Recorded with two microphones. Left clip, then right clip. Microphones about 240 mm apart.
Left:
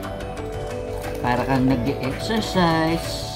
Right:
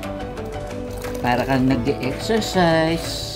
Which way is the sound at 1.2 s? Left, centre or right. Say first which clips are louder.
Right 2 dB; centre.